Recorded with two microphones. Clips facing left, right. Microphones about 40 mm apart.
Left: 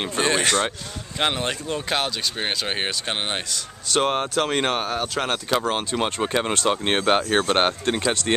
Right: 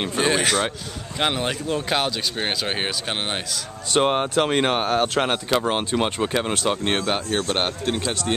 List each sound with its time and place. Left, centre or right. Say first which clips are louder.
0.0 s speech: right 1 dB; centre
3.9 s speech: right 2 dB; centre
4.8 s speech: right 5 dB; right
5.2 s speech: right 2 dB; centre
6.2 s speech: even; centre
7.0 s speech: left 4 dB; left
8.0 s speech: left 2 dB; left